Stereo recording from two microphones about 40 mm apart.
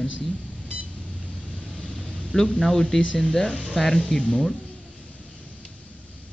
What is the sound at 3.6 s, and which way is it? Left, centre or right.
Speech, centre.